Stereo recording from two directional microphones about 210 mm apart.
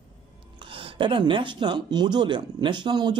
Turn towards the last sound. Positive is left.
turn(degrees=-20)  # may be behind; listen again after turning